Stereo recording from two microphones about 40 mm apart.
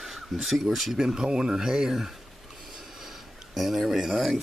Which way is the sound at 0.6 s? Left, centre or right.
Centre.